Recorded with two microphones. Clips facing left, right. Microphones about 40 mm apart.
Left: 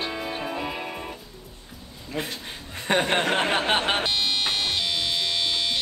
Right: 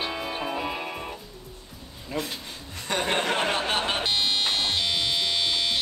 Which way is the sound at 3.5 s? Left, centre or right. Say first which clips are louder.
Left 3 dB; left.